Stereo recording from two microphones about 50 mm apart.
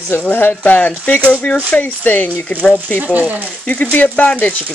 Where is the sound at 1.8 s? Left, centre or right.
Left.